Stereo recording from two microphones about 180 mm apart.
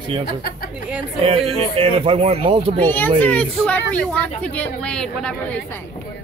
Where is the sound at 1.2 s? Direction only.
30° right (ahead or behind).